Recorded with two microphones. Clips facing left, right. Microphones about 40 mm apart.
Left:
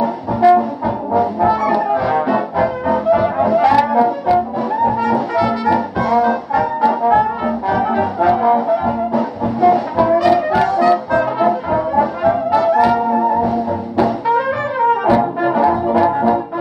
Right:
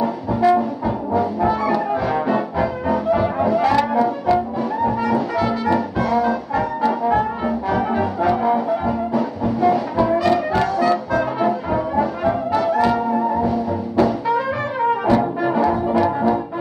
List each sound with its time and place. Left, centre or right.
0.0 s brass instrument: centre
7.4 s brass instrument: centre
13.0 s music: left
13.9 s music: centre
15.4 s brass instrument: centre